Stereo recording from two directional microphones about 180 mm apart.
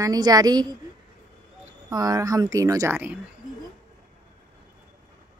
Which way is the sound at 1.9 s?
20° right (ahead or behind).